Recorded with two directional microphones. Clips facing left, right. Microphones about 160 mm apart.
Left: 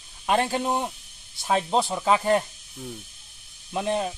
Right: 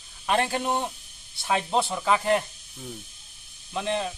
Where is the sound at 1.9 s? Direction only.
25° left (ahead or behind).